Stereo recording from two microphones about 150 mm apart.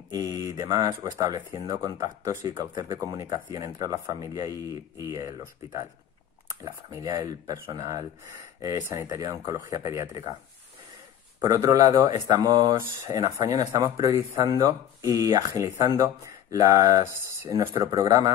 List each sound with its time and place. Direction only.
0.1 s speech: 25° right (ahead or behind)
11.4 s speech: 25° right (ahead or behind)